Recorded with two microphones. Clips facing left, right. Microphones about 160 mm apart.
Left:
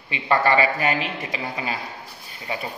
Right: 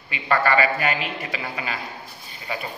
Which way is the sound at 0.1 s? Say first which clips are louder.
Left 1 dB; 25° left (ahead or behind).